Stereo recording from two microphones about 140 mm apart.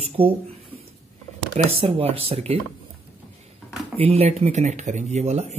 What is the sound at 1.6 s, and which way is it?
Speech, 40° right (ahead or behind).